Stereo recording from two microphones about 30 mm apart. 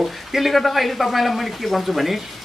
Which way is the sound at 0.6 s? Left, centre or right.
Centre.